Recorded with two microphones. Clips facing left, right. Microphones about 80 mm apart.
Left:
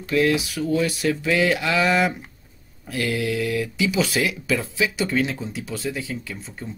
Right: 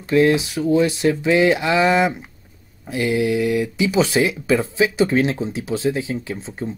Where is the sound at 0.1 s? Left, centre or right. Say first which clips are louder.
Right 5 dB; right.